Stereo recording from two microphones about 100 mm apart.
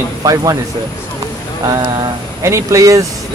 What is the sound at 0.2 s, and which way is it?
Speech, 35° right (ahead or behind).